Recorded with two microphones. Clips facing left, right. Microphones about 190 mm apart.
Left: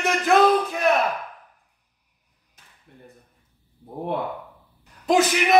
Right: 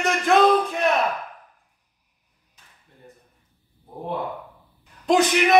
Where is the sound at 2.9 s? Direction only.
60° left (ahead or behind).